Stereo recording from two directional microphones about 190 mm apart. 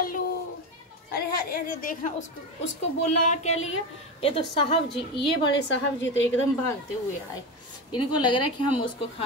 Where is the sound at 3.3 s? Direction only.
35° left (ahead or behind).